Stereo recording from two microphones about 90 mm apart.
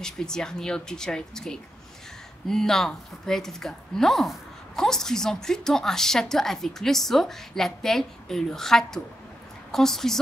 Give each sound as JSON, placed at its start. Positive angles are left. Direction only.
{"t": 0.0, "sound": "speech", "side_deg": 5}